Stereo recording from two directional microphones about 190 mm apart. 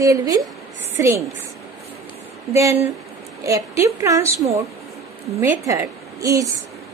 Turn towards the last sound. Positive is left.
turn(degrees=-15)  # may be behind; listen again after turning